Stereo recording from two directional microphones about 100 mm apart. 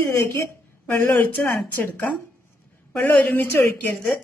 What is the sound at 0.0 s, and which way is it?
A man's voice, 30° left (ahead or behind).